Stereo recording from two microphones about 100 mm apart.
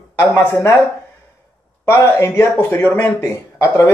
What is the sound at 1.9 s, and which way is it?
Speech, 25° left (ahead or behind).